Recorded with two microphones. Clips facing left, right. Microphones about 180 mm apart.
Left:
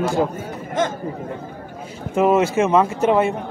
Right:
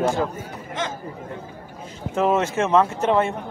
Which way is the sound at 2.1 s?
10° left (ahead or behind).